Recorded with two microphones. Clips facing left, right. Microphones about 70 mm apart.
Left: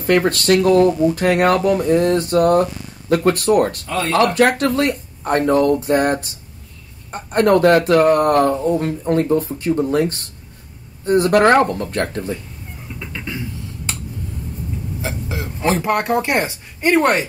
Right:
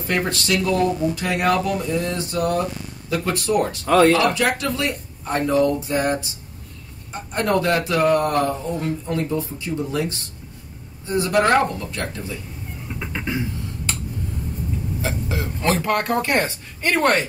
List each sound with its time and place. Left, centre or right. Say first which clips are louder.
0.0 s speech: left 7 dB; left
3.8 s speech: right 8 dB; right
4.1 s speech: left 4 dB; left
13.0 s music: right 2 dB; right
15.0 s a sound: even; centre
16.1 s speech: left 2 dB; centre